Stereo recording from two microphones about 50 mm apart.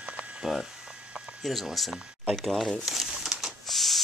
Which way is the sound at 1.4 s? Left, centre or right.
Centre.